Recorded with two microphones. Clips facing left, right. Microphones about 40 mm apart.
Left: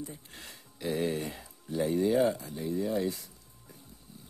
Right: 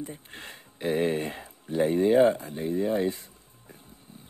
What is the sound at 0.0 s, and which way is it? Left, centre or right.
Speech, right.